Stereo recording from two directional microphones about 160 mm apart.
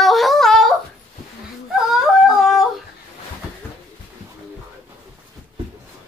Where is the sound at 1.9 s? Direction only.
Centre (ahead or behind).